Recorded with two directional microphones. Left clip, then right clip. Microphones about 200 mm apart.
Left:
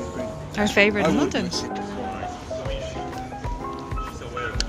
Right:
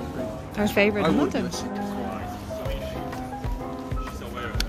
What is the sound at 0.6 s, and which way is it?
Speech, centre (ahead or behind).